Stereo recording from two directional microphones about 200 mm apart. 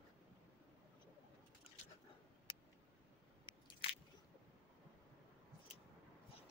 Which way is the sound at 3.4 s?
25° left (ahead or behind).